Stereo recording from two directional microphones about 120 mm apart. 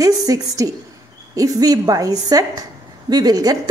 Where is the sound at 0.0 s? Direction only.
30° right (ahead or behind).